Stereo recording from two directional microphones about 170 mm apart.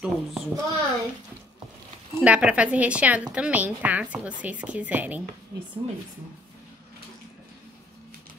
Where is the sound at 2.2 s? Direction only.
5° right (ahead or behind).